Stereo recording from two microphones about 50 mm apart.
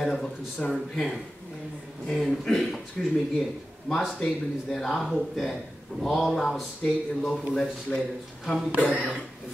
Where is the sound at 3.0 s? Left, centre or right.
Centre.